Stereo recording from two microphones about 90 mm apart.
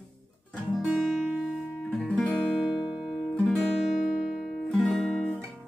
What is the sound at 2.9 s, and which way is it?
Music, 5° right (ahead or behind).